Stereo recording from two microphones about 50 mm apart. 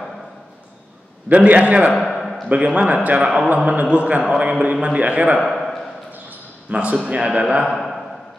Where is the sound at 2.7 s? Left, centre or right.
Right.